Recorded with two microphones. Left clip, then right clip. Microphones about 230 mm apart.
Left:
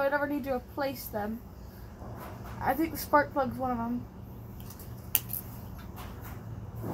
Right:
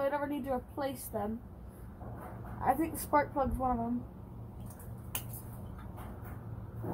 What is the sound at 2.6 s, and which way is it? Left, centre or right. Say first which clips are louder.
A woman's voice: left 1 dB; centre.